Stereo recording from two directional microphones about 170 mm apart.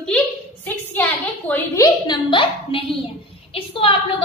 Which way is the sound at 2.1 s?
30° left (ahead or behind).